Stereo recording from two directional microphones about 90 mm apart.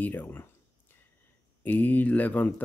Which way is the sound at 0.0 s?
20° left (ahead or behind).